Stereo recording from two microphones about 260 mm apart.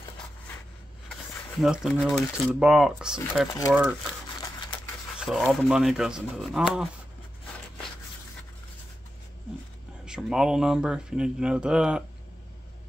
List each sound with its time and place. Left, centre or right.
1.0 s speech: centre
4.4 s camera: centre
5.2 s speech: centre
10.0 s speech: centre